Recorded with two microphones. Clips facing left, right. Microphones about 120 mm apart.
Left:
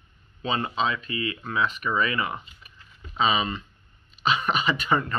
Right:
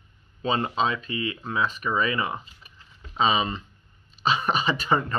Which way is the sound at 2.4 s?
35° right (ahead or behind).